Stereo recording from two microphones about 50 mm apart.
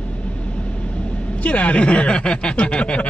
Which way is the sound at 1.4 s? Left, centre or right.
Left.